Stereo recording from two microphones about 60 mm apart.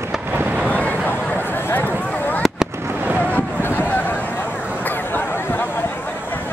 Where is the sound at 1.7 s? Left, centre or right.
Left.